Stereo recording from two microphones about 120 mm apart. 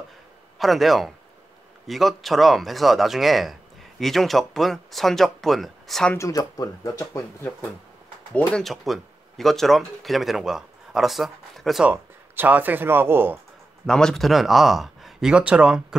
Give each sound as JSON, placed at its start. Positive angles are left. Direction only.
{"t": 0.6, "sound": "speech", "side_deg": 0}
{"t": 6.1, "sound": "speech", "side_deg": 25}
{"t": 11.9, "sound": "speech", "side_deg": -15}
{"t": 13.8, "sound": "speech", "side_deg": 5}